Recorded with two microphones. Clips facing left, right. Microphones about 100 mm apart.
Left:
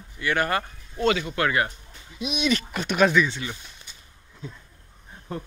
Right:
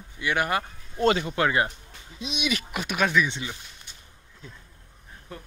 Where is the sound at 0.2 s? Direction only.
15° right (ahead or behind).